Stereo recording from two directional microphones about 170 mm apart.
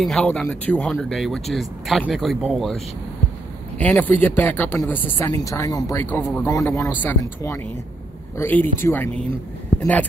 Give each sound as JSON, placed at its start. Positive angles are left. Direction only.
{"t": 0.0, "sound": "speech", "side_deg": 5}